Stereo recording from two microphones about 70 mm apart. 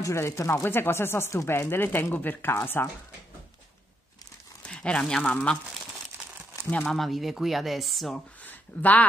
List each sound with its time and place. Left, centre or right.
0.0 s speech: left
4.6 s speech: centre
6.9 s speech: centre
8.5 s a sound: left